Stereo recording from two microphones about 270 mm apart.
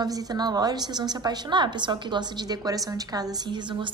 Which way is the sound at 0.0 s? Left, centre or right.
Centre.